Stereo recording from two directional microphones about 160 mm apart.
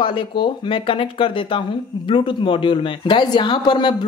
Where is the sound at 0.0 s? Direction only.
30° left (ahead or behind).